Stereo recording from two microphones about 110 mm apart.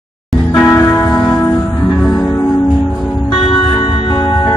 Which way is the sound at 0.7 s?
25° left (ahead or behind).